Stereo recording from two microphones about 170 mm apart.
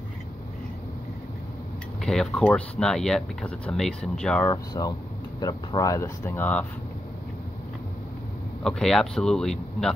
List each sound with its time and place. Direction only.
2.0 s speech: centre (ahead or behind)
4.5 s speech: 20° left (ahead or behind)
8.6 s speech: centre (ahead or behind)